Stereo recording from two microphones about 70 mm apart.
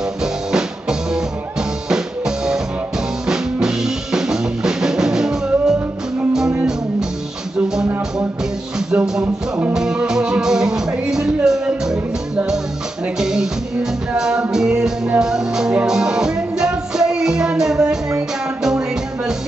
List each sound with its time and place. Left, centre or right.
0.2 s music: centre
3.3 s drum kit: centre
6.5 s music: centre
9.2 s music: right
9.8 s music: centre
13.2 s music: centre